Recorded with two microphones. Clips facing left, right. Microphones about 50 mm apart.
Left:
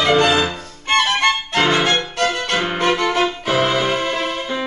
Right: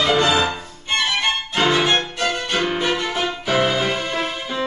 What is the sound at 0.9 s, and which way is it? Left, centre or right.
Music, left.